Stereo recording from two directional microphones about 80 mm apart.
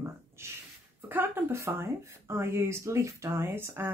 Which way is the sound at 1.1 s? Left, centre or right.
Right.